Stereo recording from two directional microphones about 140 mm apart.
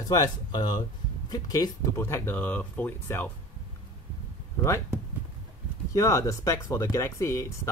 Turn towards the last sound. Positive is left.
turn(degrees=20)  # may be behind; listen again after turning